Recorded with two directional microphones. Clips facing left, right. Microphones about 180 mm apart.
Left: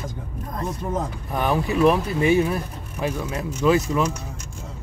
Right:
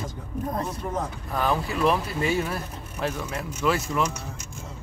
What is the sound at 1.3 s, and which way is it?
Speech, 20° left (ahead or behind).